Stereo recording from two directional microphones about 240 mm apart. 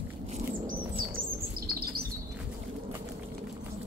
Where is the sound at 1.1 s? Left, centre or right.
Right.